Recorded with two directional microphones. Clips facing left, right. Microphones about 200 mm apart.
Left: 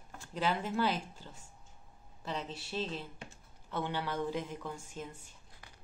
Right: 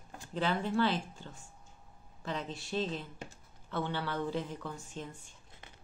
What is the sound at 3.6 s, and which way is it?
A woman's voice, 10° left (ahead or behind).